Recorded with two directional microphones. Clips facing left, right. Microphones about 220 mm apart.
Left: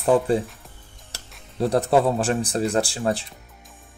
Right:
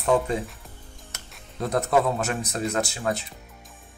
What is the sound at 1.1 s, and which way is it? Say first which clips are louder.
Music: left 5 dB; 30° left (ahead or behind).